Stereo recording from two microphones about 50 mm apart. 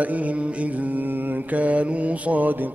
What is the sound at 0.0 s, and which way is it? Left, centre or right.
Mantra, right.